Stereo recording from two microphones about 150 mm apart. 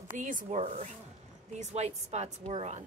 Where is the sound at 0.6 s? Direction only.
50° right (ahead or behind).